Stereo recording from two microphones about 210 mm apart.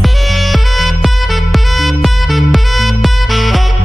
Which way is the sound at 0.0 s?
Centre (ahead or behind).